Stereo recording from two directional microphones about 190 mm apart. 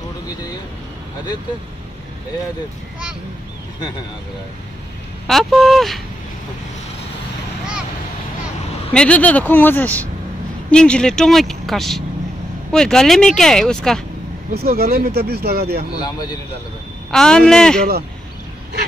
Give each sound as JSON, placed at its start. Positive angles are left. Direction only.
{"t": 5.2, "sound": "speech", "side_deg": 0}
{"t": 8.9, "sound": "speech", "side_deg": 5}
{"t": 14.5, "sound": "speech", "side_deg": -55}
{"t": 16.0, "sound": "a man's voice", "side_deg": 20}
{"t": 17.1, "sound": "speech", "side_deg": 5}